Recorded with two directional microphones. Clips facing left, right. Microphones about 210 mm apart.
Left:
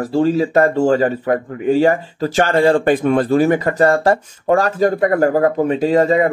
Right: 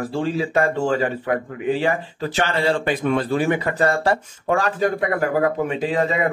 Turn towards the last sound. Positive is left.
turn(degrees=40)  # may be behind; listen again after turning